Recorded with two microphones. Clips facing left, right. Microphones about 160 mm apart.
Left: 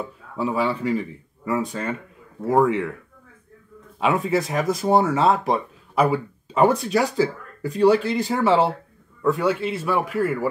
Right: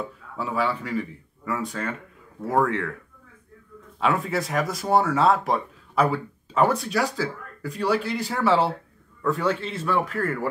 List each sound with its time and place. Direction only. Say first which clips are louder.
0.4 s speech: left 3 dB; 20° left (ahead or behind)
4.0 s speech: left 3 dB; 15° left (ahead or behind)